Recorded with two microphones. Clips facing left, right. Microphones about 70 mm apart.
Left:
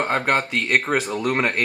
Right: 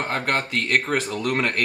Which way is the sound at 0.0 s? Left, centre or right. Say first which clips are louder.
Left 4 dB; centre.